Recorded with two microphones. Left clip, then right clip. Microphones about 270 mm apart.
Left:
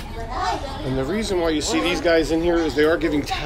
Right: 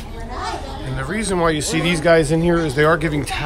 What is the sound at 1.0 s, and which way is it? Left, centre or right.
Speech, centre.